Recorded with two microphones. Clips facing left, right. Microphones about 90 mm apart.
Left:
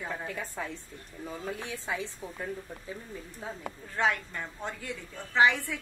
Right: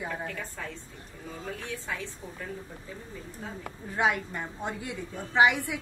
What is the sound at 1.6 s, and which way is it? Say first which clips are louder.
Speech: left 1 dB; 15° left (ahead or behind).